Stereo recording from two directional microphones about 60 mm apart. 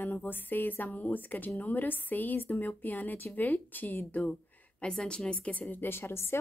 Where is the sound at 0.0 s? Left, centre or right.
Left.